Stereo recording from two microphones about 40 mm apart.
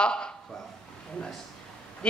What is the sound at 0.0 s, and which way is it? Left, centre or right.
Speech, left.